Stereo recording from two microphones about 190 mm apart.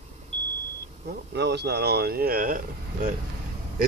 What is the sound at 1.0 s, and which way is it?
Speech, 60° right (ahead or behind).